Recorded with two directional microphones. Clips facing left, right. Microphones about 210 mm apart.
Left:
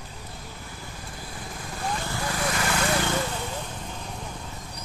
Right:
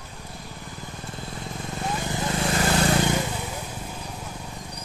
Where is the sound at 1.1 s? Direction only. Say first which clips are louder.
Right 4 dB; 25° right (ahead or behind).